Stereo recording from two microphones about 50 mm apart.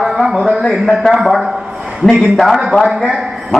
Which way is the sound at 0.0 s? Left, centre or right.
Centre.